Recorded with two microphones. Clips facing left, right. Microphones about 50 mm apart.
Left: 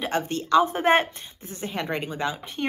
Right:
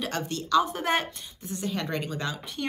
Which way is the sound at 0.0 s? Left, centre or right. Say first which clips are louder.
Left 5 dB; left.